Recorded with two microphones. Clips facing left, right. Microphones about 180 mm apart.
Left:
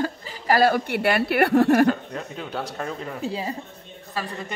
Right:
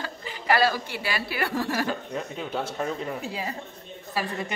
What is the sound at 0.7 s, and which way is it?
A woman's voice, 60° left (ahead or behind).